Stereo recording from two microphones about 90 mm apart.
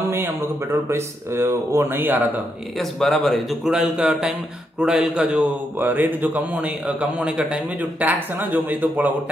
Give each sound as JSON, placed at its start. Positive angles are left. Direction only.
{"t": 0.8, "sound": "speech", "side_deg": -30}
{"t": 2.8, "sound": "speech", "side_deg": 5}